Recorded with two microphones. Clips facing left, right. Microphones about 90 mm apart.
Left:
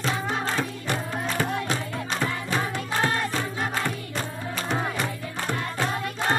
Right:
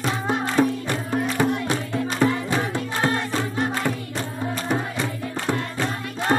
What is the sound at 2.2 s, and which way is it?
Music, 20° right (ahead or behind).